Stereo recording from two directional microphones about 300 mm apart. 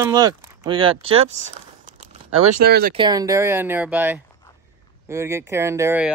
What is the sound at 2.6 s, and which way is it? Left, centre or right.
Speech, right.